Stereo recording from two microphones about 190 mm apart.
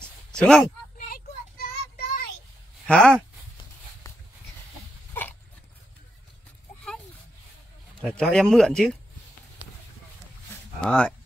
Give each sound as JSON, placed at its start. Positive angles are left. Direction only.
{"t": 0.0, "sound": "a sound", "side_deg": 5}
{"t": 0.9, "sound": "child singing", "side_deg": 50}
{"t": 2.9, "sound": "speech", "side_deg": 5}
{"t": 8.2, "sound": "speech", "side_deg": 5}
{"t": 10.8, "sound": "speech", "side_deg": 5}